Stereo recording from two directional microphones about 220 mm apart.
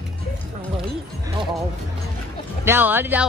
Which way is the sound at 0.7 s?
20° right (ahead or behind).